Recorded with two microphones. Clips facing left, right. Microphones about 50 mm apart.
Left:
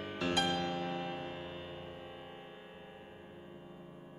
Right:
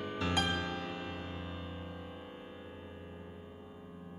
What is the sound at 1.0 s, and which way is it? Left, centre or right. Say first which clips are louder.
Music: left 1 dB; left.